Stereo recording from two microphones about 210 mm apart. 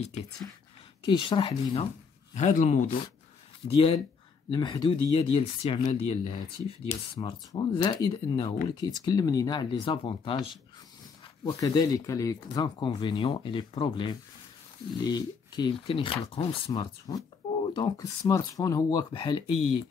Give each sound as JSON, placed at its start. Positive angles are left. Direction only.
{"t": 1.0, "sound": "speech", "side_deg": 25}
{"t": 2.3, "sound": "speech", "side_deg": 35}
{"t": 11.4, "sound": "speech", "side_deg": 20}